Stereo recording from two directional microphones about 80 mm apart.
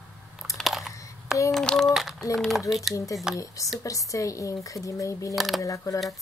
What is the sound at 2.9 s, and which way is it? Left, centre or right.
A woman's voice, left.